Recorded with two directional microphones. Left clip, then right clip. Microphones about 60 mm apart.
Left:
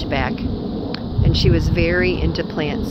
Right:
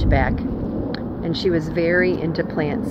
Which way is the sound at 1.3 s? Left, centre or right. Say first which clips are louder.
Left 1 dB; centre.